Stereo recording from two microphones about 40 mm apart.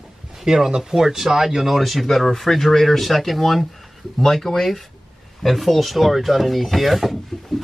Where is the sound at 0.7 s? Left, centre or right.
Centre.